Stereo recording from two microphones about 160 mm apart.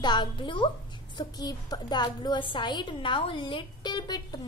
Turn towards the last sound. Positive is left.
turn(degrees=25)  # may be behind; listen again after turning